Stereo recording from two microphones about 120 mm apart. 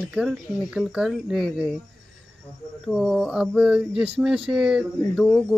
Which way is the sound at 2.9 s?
Centre (ahead or behind).